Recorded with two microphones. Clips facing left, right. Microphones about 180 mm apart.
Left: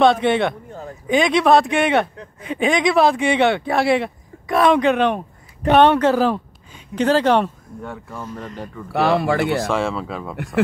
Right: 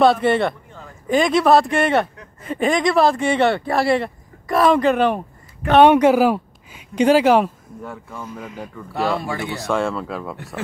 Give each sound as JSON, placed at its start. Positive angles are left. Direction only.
{"t": 0.0, "sound": "speech", "side_deg": -5}
{"t": 0.7, "sound": "a sound", "side_deg": 40}
{"t": 1.0, "sound": "speech", "side_deg": 0}
{"t": 8.9, "sound": "speech", "side_deg": 70}
{"t": 9.7, "sound": "speech", "side_deg": 0}